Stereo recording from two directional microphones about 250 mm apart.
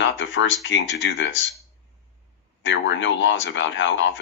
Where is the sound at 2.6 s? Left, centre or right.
Left.